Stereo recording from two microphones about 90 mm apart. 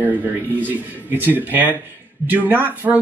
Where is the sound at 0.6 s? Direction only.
20° right (ahead or behind).